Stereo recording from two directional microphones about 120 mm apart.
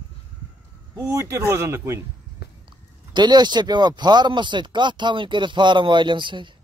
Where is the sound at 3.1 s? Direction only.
35° right (ahead or behind).